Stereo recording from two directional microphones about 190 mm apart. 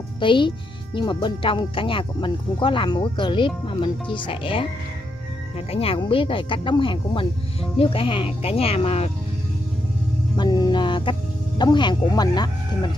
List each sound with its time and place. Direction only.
0.2 s a child's voice: 25° left (ahead or behind)
5.7 s speech: 30° left (ahead or behind)
10.3 s speech: 20° left (ahead or behind)